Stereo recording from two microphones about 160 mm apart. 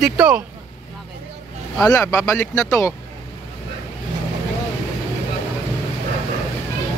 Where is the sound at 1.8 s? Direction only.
20° left (ahead or behind).